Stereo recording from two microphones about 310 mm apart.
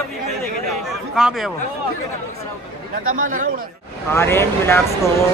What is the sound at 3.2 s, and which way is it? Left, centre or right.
Speech, right.